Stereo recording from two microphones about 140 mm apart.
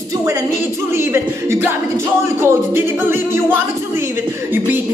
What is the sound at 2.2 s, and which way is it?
A capella, 15° right (ahead or behind).